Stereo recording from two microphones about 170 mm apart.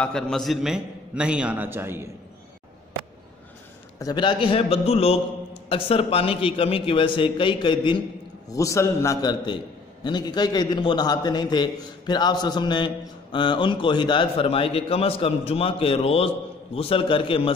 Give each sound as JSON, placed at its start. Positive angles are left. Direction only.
{"t": 0.0, "sound": "a man's voice", "side_deg": 5}
{"t": 4.0, "sound": "a man's voice", "side_deg": 25}